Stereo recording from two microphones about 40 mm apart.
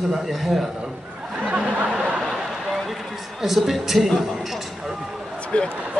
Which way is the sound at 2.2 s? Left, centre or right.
Centre.